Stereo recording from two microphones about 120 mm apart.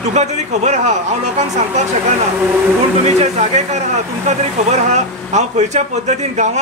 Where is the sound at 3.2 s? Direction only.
70° right (ahead or behind).